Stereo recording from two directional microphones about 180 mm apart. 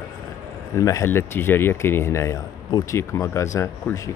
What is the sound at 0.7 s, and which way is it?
Speech, 15° left (ahead or behind).